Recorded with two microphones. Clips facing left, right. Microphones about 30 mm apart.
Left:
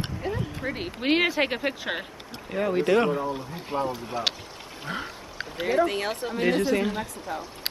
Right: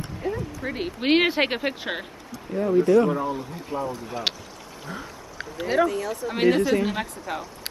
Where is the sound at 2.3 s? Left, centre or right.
Left.